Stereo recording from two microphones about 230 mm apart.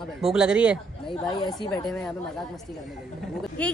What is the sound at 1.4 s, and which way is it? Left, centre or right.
Speech, centre.